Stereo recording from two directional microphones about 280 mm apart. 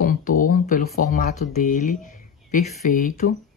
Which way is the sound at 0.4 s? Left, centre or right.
Left.